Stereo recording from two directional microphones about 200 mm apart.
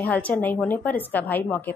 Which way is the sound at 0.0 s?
5° left (ahead or behind).